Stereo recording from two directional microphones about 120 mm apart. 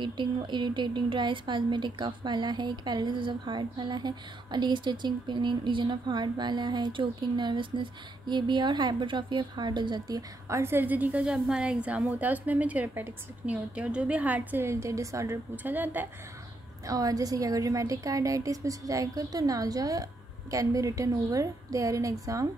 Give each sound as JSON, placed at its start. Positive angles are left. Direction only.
{"t": 0.0, "sound": "a woman's voice", "side_deg": -40}
{"t": 10.6, "sound": "a woman's voice", "side_deg": -15}
{"t": 15.5, "sound": "a woman's voice", "side_deg": -15}
{"t": 16.8, "sound": "a woman's voice", "side_deg": -30}